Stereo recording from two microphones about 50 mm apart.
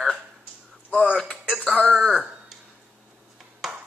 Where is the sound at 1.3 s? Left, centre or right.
Left.